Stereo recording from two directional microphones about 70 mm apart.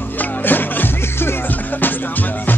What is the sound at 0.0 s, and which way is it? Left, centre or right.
Music, left.